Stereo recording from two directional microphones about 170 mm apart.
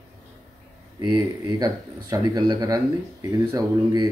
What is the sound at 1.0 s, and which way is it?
Speech, 25° right (ahead or behind).